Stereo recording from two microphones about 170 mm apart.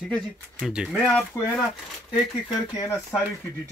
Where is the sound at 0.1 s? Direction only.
Centre (ahead or behind).